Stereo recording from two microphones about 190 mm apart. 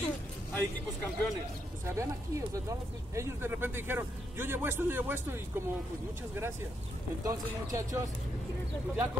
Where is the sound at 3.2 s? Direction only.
10° right (ahead or behind).